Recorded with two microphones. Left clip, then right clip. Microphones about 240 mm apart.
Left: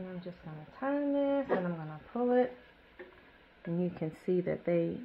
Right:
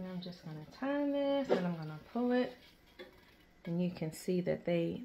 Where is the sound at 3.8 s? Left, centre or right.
Left.